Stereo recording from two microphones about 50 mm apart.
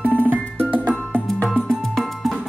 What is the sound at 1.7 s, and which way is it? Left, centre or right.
Music, centre.